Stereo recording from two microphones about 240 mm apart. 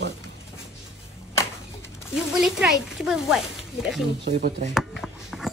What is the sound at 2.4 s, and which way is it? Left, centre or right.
Speech, centre.